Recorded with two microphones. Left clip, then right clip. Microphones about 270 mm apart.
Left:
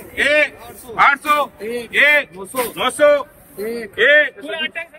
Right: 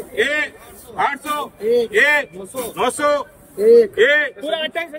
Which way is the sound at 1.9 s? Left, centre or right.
Centre.